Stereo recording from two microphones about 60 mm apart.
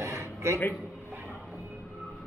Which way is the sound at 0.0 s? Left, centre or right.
Right.